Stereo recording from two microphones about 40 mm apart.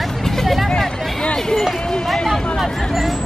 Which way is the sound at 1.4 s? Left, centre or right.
Centre.